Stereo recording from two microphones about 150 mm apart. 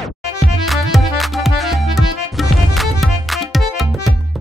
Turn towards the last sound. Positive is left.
turn(degrees=0)  # may be behind; listen again after turning